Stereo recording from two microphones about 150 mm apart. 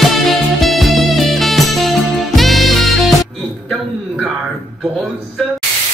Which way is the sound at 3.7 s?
Centre (ahead or behind).